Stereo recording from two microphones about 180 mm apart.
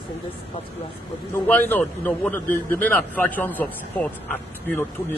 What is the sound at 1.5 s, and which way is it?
A man's voice, 10° left (ahead or behind).